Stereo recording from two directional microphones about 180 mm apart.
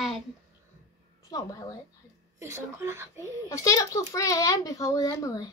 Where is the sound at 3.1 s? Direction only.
15° left (ahead or behind).